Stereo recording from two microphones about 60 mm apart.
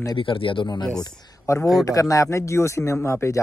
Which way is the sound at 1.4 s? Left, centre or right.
Left.